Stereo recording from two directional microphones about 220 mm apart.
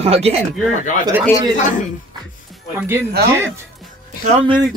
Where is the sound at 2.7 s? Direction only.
10° right (ahead or behind).